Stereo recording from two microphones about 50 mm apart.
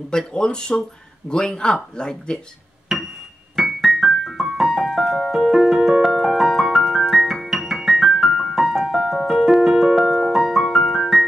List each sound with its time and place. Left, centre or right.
0.3 s speech: centre
2.9 s a sound: centre
3.5 s keyboard: centre